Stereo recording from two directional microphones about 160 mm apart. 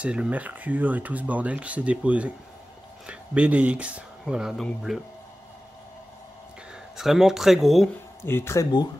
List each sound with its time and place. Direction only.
0.0 s speech: 5° right (ahead or behind)
7.0 s speech: centre (ahead or behind)
8.2 s speech: 15° left (ahead or behind)